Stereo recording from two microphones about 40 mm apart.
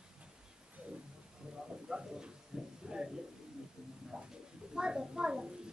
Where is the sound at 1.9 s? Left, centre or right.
Centre.